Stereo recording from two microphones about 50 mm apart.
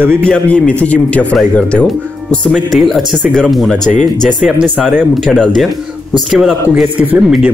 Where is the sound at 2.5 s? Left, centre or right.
Centre.